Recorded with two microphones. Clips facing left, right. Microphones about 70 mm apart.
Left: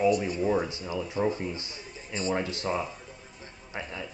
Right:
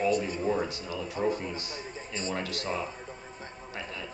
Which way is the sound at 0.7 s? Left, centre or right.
Left.